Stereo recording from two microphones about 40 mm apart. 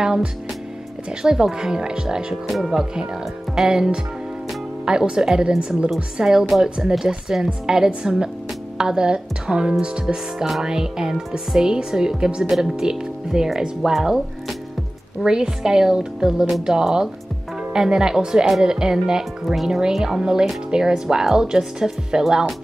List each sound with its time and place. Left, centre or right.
0.0 s music: centre
1.2 s speech: centre
2.4 s speech: centre; by 5.9 s right
6.1 s speech: centre
15.2 s speech: centre
19.4 s speech: centre
20.2 s speech: centre